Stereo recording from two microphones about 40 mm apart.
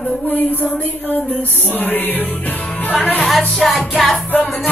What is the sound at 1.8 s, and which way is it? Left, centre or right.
Music, left.